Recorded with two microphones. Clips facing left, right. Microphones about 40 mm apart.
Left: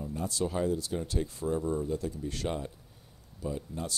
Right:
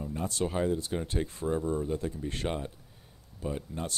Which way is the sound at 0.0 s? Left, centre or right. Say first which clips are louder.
Right 1 dB; right.